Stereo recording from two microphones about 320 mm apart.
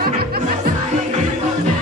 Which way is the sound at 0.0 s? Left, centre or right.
Right.